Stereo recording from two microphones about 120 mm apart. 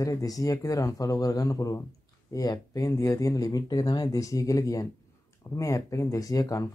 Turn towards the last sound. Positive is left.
turn(degrees=30)  # may be behind; listen again after turning